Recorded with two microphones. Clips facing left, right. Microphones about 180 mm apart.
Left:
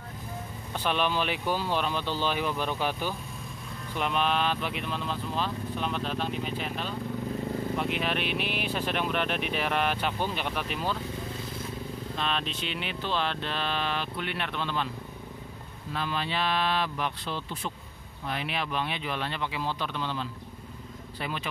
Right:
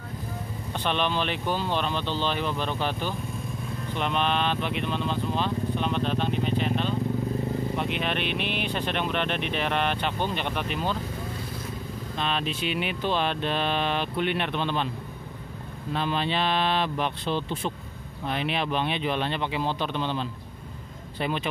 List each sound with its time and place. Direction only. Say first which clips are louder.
0.7 s speech: right 1 dB; 5° left (ahead or behind)
12.2 s speech: right 4 dB; 5° right (ahead or behind); by 14.9 s 20° right (ahead or behind)
15.9 s speech: right 5 dB; 25° right (ahead or behind)